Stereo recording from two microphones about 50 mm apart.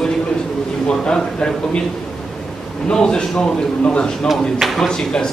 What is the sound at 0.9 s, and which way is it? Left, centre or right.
Speech, centre.